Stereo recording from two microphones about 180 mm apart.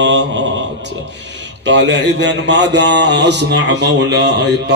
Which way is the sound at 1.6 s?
75° right (ahead or behind).